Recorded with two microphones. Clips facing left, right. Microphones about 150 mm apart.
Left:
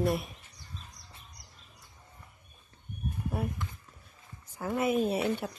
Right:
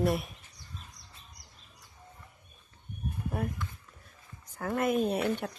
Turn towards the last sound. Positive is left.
turn(degrees=5)  # may be behind; listen again after turning